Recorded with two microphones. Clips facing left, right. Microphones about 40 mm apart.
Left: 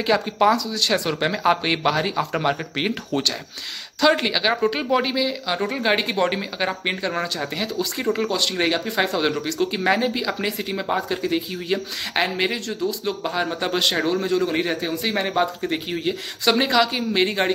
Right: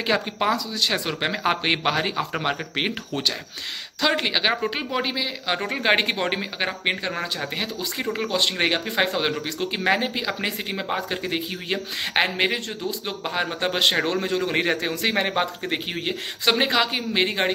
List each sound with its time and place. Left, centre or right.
0.0 s speech: right
0.5 s speech: centre
4.0 s speech: centre
4.3 s speech: right
4.6 s speech: centre
5.7 s a man's voice: right
6.1 s speech: right
7.1 s speech: centre
8.0 s speech: centre
8.4 s speech: right
14.0 s a man's voice: right
15.2 s speech: right
16.4 s speech: right